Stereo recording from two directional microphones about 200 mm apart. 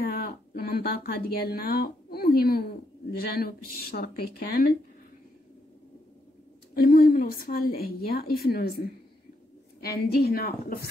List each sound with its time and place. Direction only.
0.0 s speech: 50° left (ahead or behind)
6.7 s speech: 45° left (ahead or behind)